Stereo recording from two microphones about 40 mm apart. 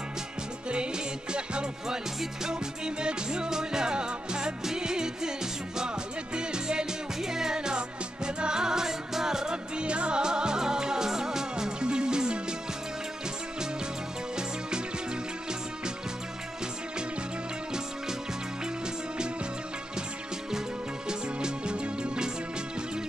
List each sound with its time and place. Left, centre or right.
0.7 s music: right
21.1 s music: right